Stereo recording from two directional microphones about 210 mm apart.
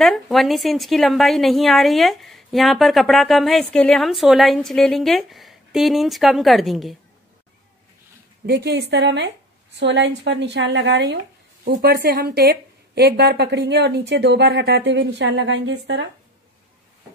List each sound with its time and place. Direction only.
0.0 s a woman's voice: centre (ahead or behind)
8.5 s a woman's voice: 55° right (ahead or behind)